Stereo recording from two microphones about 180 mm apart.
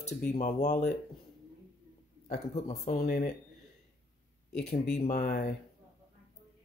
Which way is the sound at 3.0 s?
50° left (ahead or behind).